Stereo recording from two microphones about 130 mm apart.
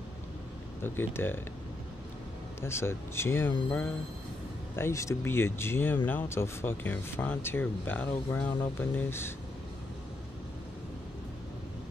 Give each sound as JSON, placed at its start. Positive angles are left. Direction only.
{"t": 0.8, "sound": "speech", "side_deg": 15}
{"t": 2.6, "sound": "speech", "side_deg": 20}
{"t": 4.7, "sound": "speech", "side_deg": 20}